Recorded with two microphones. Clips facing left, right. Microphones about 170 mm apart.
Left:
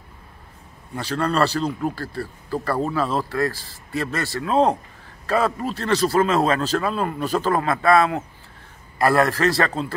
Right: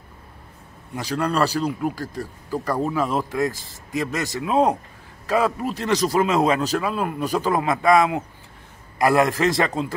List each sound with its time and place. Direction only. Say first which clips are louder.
0.9 s speech: left 1 dB; 10° right (ahead or behind)